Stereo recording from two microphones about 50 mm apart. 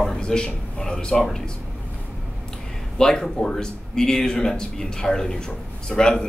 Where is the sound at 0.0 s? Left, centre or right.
Centre.